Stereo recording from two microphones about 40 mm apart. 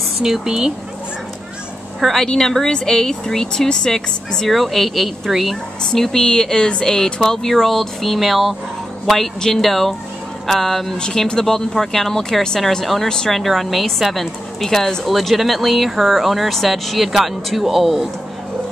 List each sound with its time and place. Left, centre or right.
0.2 s speech: centre
2.0 s speech: centre
4.5 s a woman's voice: centre
5.9 s a woman's voice: centre